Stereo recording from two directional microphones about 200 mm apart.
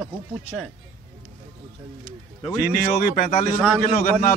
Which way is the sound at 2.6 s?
45° left (ahead or behind).